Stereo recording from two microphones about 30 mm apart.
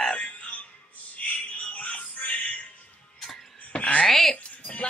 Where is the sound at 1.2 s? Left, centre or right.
Left.